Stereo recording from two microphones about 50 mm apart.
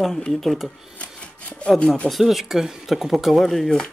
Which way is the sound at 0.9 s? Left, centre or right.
Left.